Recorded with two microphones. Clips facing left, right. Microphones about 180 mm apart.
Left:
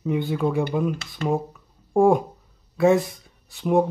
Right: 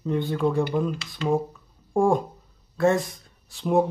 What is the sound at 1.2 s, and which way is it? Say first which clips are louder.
Speech: even; 50° left (ahead or behind).